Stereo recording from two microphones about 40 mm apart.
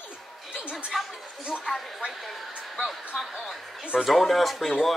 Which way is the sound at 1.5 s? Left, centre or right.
Centre.